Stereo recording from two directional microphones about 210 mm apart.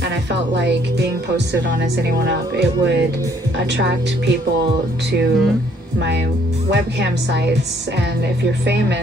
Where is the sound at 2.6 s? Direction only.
55° right (ahead or behind).